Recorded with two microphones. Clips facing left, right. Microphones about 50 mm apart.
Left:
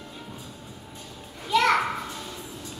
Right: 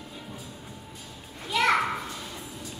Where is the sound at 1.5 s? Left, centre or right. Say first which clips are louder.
Left 4 dB; centre.